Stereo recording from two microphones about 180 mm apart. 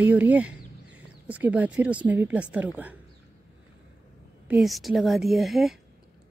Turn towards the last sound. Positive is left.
turn(degrees=0)  # may be behind; listen again after turning